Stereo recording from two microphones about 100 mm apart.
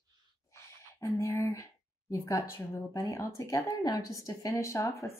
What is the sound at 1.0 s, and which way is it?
A woman's voice, 30° left (ahead or behind).